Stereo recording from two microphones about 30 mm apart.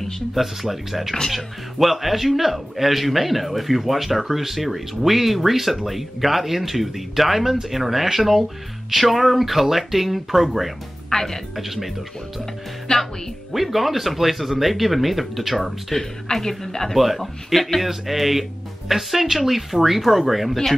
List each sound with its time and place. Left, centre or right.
0.3 s speech: centre
11.1 s speech: centre
11.5 s speech: centre
12.9 s speech: left
13.5 s speech: centre
15.9 s speech: centre
16.9 s speech: centre